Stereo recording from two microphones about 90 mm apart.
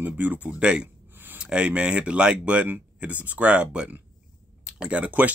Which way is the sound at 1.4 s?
10° right (ahead or behind).